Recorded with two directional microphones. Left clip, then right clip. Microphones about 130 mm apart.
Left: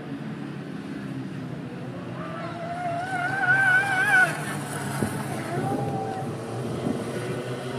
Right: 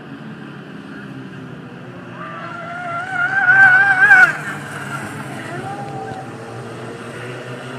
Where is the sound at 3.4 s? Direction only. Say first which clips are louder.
Right 11 dB; centre (ahead or behind).